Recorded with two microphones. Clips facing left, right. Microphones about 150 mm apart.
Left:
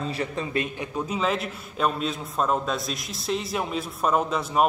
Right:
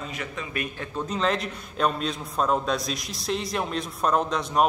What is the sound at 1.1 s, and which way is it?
A man's voice, 5° left (ahead or behind).